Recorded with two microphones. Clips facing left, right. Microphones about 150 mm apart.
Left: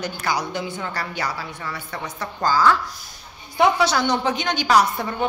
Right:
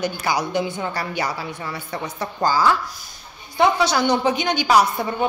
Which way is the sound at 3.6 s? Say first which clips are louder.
Even; 5° left (ahead or behind).